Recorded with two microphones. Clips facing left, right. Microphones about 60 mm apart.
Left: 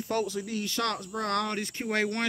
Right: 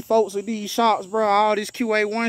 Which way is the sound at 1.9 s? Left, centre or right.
Right.